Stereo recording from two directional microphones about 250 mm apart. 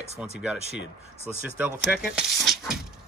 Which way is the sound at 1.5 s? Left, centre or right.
Centre.